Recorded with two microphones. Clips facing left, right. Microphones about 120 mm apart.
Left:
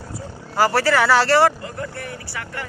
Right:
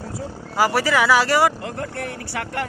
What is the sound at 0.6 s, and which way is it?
Speech, 10° right (ahead or behind).